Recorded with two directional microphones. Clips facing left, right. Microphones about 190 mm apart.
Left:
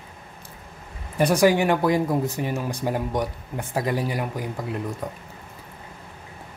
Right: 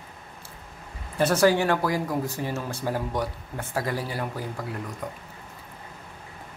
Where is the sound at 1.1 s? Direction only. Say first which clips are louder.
Left 2 dB; 15° left (ahead or behind).